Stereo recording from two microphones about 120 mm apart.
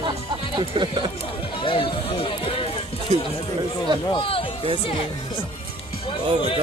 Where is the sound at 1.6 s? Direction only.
50° left (ahead or behind).